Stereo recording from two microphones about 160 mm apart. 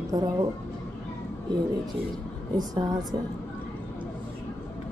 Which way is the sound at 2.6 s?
25° right (ahead or behind).